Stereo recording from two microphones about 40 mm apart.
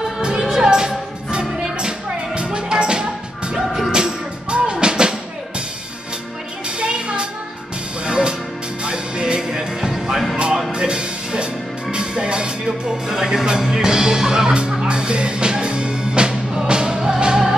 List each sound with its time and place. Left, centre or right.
0.4 s music: centre
6.8 s music: right
14.9 s music: right